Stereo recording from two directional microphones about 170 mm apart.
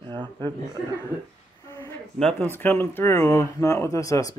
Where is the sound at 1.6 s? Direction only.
15° left (ahead or behind).